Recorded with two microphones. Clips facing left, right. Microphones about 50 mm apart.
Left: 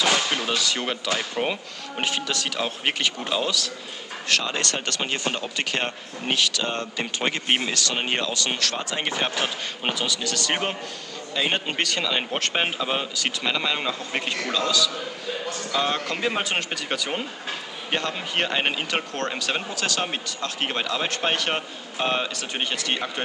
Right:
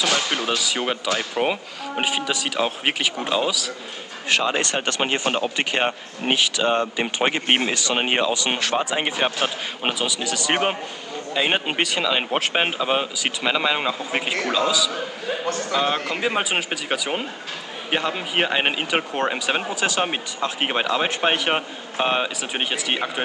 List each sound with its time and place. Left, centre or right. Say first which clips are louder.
0.2 s a sound: right 1 dB; centre
0.6 s speech: right 2 dB; centre
4.3 s speech: right 4 dB; centre